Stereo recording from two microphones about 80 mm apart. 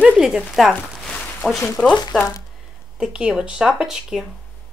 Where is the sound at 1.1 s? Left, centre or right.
Centre.